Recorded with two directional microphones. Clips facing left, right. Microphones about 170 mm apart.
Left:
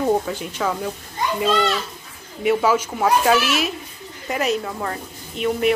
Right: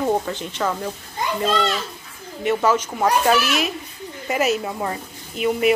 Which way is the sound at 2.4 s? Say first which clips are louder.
Left 1 dB; 5° left (ahead or behind).